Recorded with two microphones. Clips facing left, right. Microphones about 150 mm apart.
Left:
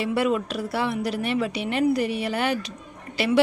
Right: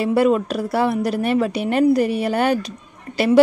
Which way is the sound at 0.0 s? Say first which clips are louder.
Right 6 dB; 45° right (ahead or behind).